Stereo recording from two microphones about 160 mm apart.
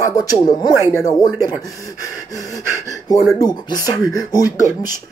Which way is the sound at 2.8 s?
20° left (ahead or behind).